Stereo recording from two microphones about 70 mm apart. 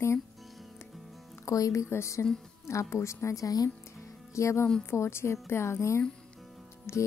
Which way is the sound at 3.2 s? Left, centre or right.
Left.